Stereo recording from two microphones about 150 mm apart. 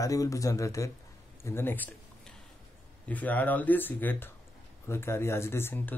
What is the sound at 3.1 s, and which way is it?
Speech, 10° left (ahead or behind).